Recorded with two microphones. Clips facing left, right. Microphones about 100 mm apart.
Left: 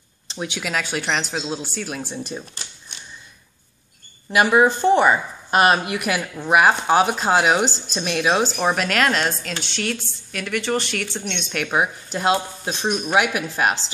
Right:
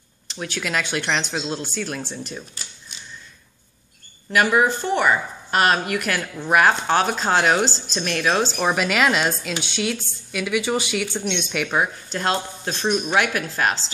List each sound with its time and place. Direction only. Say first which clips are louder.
0.3 s speech: left 2 dB; 20° left (ahead or behind)
0.6 s a woman's voice: right 1 dB; 5° left (ahead or behind)
4.3 s a woman's voice: left 2 dB; 15° left (ahead or behind)